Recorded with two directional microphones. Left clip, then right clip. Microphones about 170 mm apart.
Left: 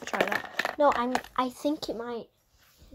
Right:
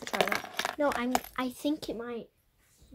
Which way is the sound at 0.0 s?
25° right (ahead or behind).